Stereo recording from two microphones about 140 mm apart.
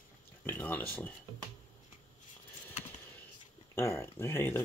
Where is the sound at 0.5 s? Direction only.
10° left (ahead or behind).